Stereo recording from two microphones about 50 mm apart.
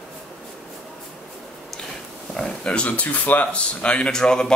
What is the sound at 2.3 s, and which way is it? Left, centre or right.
Speech, centre.